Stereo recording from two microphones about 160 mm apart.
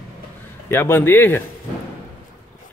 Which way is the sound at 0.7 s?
15° left (ahead or behind).